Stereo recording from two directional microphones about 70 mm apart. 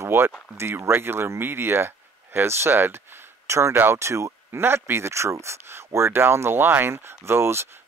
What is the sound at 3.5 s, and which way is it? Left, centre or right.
Speech, right.